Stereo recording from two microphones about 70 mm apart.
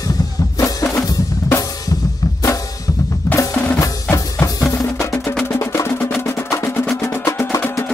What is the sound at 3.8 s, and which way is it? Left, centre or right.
Music, left.